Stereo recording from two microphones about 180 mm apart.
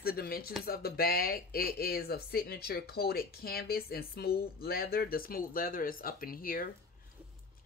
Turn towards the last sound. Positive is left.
turn(degrees=55)  # may be behind; listen again after turning